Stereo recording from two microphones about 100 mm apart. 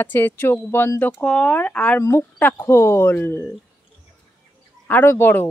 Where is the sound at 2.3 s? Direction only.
15° left (ahead or behind).